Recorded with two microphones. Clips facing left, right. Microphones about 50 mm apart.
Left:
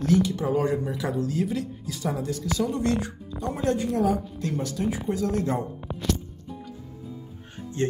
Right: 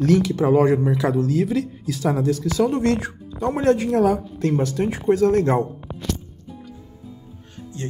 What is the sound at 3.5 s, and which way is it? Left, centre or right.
Speech, right.